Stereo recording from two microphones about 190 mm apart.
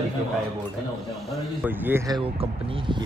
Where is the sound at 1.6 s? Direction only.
10° right (ahead or behind); by 3.0 s 25° right (ahead or behind).